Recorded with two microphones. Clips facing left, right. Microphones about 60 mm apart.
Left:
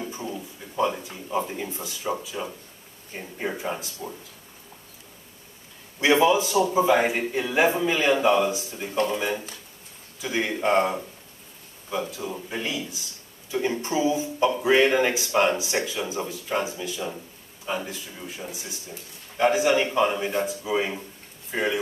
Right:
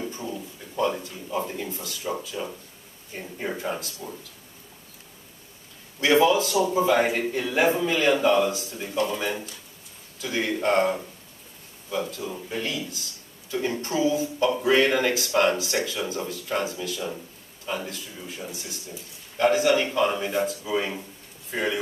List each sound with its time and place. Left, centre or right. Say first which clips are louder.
0.0 s a sound: even; centre
1.0 s a man's voice: left 1 dB; centre
5.9 s a man's voice: even; centre
12.1 s a man's voice: even; centre